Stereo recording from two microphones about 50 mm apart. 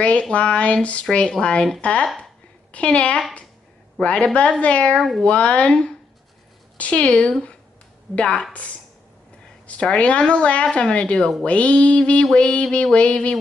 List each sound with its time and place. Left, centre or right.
0.0 s speech: left
4.9 s speech: centre
5.2 s speech: left
8.2 s a sound: centre
9.9 s speech: left
12.3 s a sound: centre
12.9 s speech: left